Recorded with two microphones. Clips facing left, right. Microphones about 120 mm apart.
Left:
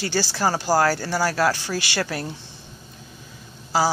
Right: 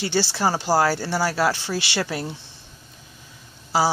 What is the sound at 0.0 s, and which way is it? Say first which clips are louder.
Speech: right 1 dB; 25° right (ahead or behind).